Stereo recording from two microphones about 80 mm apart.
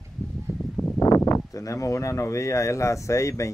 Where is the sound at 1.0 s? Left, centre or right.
Left.